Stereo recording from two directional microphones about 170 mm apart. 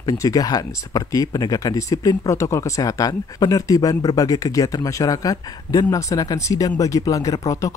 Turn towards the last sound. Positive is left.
turn(degrees=20)  # may be behind; listen again after turning